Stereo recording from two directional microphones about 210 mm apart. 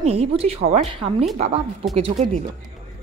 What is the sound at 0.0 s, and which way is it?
Speech, 30° right (ahead or behind).